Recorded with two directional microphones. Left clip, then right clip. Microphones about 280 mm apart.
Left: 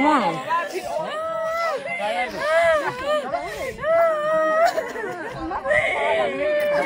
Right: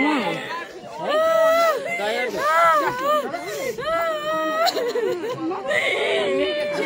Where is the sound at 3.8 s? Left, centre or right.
Centre.